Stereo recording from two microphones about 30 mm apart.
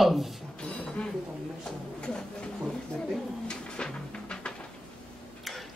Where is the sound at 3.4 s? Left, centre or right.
Left.